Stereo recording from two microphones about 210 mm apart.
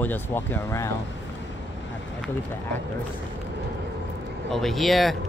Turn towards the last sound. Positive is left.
turn(degrees=0)  # may be behind; listen again after turning